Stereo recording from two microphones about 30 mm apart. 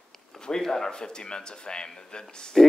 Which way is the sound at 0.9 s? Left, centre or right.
Left.